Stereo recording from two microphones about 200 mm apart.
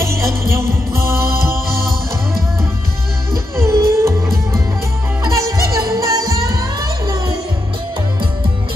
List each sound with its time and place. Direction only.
0.0 s music: 15° right (ahead or behind)
3.5 s music: 15° right (ahead or behind)